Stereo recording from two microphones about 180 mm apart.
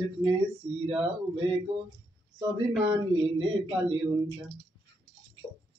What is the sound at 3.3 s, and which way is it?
Speech, 30° right (ahead or behind).